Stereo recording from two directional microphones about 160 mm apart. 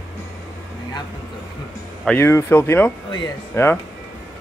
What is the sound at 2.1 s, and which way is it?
Speech, 15° left (ahead or behind).